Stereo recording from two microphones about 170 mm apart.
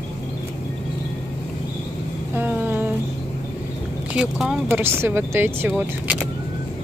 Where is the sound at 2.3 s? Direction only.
10° right (ahead or behind).